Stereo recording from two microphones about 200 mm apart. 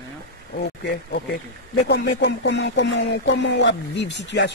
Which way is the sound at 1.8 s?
60° left (ahead or behind).